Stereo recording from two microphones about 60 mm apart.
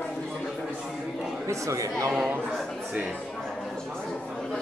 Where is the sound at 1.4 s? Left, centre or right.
Right.